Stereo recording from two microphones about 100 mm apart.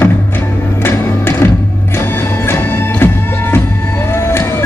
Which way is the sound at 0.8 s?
25° left (ahead or behind).